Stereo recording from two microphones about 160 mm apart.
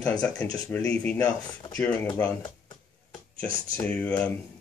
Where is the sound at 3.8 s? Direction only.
10° left (ahead or behind).